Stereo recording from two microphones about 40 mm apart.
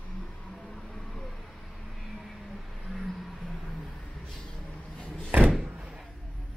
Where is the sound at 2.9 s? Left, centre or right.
Centre.